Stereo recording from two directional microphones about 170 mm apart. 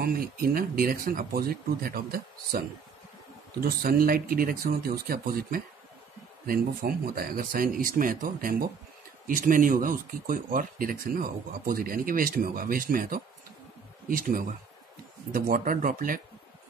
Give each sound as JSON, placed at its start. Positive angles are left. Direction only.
{"t": 0.0, "sound": "speech", "side_deg": -60}
{"t": 3.6, "sound": "speech", "side_deg": -60}